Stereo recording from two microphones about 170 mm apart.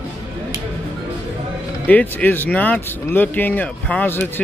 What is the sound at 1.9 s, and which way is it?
Speech, 10° left (ahead or behind).